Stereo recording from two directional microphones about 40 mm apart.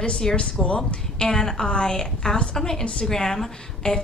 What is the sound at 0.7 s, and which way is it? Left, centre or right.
A woman's voice, centre.